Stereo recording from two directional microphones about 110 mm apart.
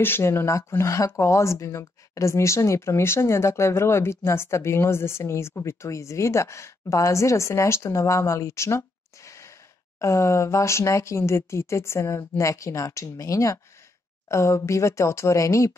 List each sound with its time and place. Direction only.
0.0 s speech: 20° left (ahead or behind)